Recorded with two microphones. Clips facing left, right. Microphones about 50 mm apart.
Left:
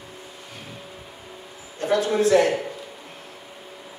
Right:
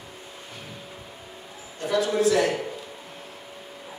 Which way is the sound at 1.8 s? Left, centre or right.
Left.